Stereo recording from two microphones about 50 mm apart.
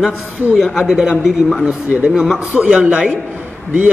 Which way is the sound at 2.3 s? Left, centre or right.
Centre.